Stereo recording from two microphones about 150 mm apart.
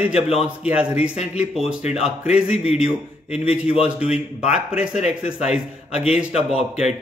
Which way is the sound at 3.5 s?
40° left (ahead or behind).